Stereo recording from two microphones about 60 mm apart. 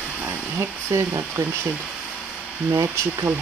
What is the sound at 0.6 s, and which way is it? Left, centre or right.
Speech, right.